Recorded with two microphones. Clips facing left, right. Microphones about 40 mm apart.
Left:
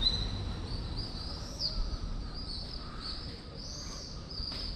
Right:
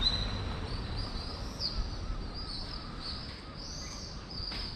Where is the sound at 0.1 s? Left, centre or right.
Right; by 1.7 s centre.